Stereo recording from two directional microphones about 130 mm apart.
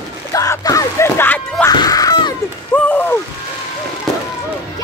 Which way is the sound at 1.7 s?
30° left (ahead or behind).